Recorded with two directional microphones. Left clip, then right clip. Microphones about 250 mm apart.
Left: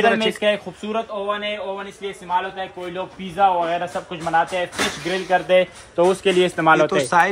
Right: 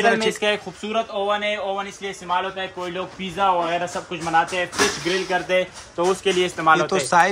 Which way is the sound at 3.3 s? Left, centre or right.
Centre.